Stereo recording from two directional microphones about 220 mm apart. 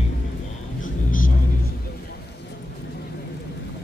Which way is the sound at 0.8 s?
40° left (ahead or behind).